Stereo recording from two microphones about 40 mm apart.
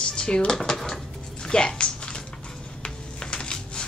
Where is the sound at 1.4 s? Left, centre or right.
Left.